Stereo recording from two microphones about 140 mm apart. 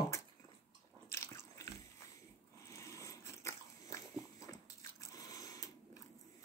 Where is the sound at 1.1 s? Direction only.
20° left (ahead or behind).